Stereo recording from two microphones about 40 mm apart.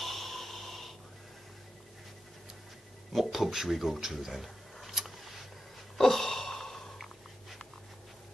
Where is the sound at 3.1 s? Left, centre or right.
Centre.